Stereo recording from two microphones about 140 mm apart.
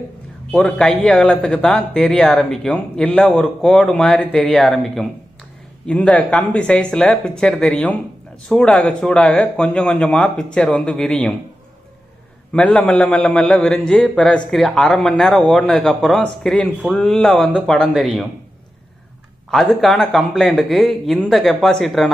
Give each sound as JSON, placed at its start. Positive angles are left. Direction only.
{"t": 0.5, "sound": "speech", "side_deg": 5}
{"t": 12.5, "sound": "speech", "side_deg": 5}
{"t": 19.5, "sound": "speech", "side_deg": 5}